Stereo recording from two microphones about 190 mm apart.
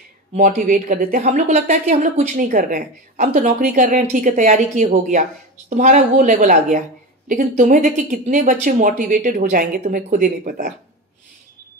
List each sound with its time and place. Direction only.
0.3 s speech: 35° right (ahead or behind)
0.6 s speech: 45° right (ahead or behind)